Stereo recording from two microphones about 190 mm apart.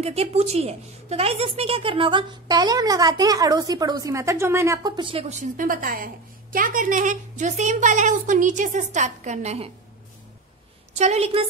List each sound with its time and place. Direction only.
0.0 s a woman's voice: 35° right (ahead or behind)
5.4 s a woman's voice: 45° right (ahead or behind)
11.0 s a woman's voice: 35° right (ahead or behind)